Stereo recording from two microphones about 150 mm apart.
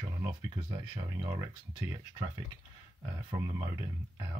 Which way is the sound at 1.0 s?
20° right (ahead or behind).